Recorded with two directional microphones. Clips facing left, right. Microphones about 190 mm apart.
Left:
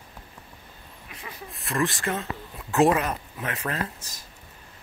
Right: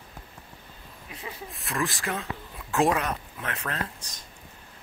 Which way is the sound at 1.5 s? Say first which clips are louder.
Left 4 dB; centre (ahead or behind).